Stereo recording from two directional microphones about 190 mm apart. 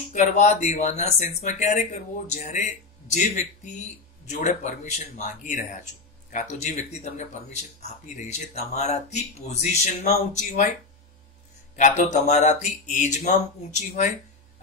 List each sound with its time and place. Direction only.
0.1 s speech: 40° left (ahead or behind)
11.7 s speech: 40° left (ahead or behind)